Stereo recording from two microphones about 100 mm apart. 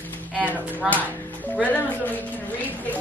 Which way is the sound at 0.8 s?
5° right (ahead or behind).